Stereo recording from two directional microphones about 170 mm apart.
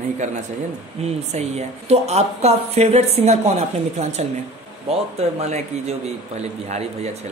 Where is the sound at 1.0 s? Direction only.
35° right (ahead or behind).